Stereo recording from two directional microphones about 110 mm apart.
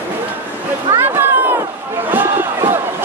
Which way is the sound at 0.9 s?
20° right (ahead or behind).